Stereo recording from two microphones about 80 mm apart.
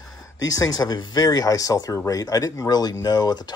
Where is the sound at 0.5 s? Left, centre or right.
Left.